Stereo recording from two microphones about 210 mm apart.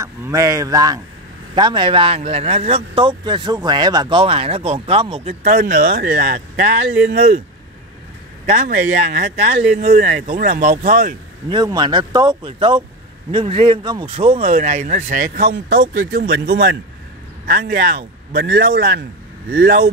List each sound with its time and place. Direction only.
0.0 s a man's voice: 15° right (ahead or behind); by 7.4 s 35° right (ahead or behind)
8.5 s a man's voice: 35° right (ahead or behind)
11.4 s a man's voice: 20° right (ahead or behind); by 16.1 s 60° right (ahead or behind)
16.1 s speech: 50° right (ahead or behind)